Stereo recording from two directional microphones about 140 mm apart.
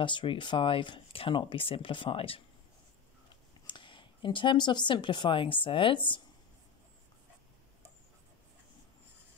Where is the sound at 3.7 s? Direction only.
35° left (ahead or behind).